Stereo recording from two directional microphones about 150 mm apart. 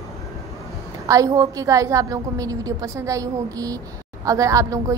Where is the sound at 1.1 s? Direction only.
20° right (ahead or behind).